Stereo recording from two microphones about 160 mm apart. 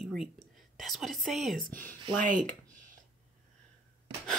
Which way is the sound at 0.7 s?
Centre (ahead or behind).